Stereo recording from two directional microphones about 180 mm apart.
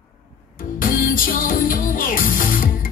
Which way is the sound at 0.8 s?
50° left (ahead or behind).